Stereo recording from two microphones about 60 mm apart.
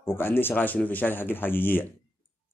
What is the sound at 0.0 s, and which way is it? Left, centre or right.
Speech, left.